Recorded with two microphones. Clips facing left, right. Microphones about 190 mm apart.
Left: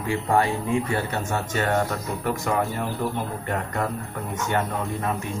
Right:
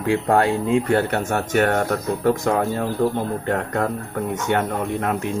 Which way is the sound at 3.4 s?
85° right.